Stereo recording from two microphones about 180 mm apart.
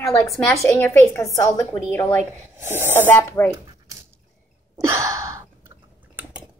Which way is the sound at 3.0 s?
10° left (ahead or behind).